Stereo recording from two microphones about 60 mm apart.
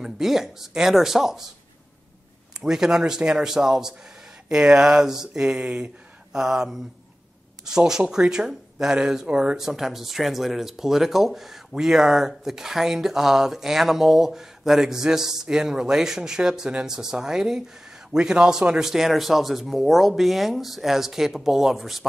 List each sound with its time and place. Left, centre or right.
0.0 s speech: centre
2.6 s speech: centre